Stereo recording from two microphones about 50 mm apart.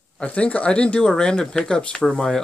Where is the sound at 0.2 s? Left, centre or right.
Left.